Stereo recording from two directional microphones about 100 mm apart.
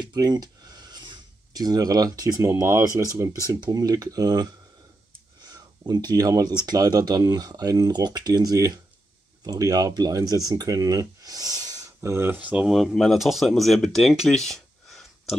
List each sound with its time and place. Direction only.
0.0 s a sound: 45° right (ahead or behind)
3.0 s speech: 35° right (ahead or behind)
5.5 s speech: 40° right (ahead or behind); by 12.6 s 15° right (ahead or behind)
12.6 s speech: centre (ahead or behind)